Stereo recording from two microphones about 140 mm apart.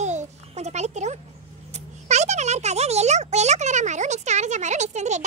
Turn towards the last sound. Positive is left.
turn(degrees=-55)  # may be behind; listen again after turning